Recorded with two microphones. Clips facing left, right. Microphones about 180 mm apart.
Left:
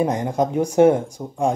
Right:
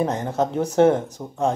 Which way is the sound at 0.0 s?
15° left (ahead or behind).